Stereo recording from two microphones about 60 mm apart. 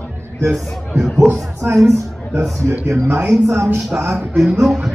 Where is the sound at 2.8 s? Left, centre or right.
Right.